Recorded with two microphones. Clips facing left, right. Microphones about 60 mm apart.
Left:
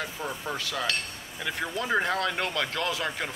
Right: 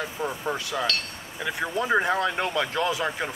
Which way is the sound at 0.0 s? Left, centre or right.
Centre.